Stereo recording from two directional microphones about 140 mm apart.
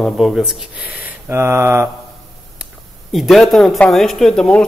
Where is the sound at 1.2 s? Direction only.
15° right (ahead or behind).